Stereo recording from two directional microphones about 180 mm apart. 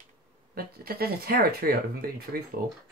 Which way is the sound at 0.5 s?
60° right (ahead or behind).